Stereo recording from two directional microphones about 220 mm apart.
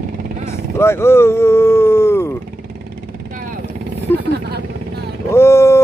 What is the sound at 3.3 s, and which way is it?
Vehicle, 40° right (ahead or behind).